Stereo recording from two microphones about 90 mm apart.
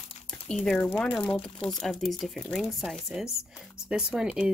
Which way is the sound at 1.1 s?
10° left (ahead or behind).